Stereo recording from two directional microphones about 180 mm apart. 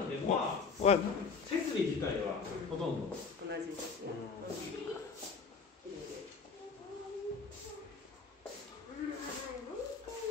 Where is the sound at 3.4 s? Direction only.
70° right (ahead or behind).